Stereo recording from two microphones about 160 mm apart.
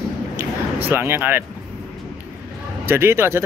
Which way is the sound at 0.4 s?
15° right (ahead or behind).